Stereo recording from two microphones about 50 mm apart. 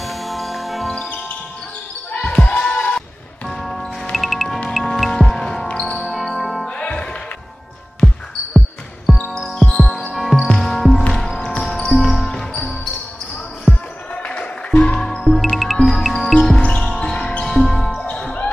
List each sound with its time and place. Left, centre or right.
0.0 s music: centre
2.2 s basketball bounce: left
3.4 s music: centre
5.1 s music: centre
6.7 s music: left
8.0 s basketball bounce: centre
9.4 s music: centre
13.7 s basketball bounce: centre
14.1 s a sound: left
15.0 s music: centre
16.3 s basketball bounce: centre
17.5 s music: centre